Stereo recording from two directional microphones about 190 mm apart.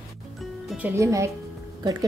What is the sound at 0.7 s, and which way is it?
Speech, 10° right (ahead or behind).